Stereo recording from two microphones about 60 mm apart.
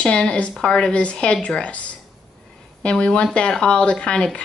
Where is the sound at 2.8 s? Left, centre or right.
Centre.